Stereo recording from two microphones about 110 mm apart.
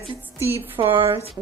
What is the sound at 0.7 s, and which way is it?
Speech, 55° right (ahead or behind).